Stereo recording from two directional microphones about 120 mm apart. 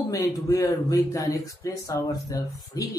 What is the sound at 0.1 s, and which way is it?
Speech, 25° left (ahead or behind).